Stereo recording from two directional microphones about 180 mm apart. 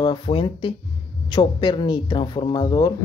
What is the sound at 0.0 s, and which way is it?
Speech, 25° left (ahead or behind).